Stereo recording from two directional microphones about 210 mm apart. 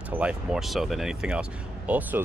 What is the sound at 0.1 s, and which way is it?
Speech, 5° right (ahead or behind).